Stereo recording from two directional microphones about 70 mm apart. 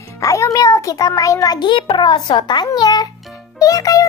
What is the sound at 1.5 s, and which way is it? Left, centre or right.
A child's voice, left.